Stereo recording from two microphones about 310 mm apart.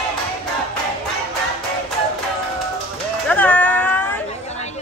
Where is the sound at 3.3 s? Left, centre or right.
Centre.